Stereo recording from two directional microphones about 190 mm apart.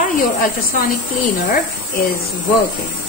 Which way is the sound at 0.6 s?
50° left (ahead or behind).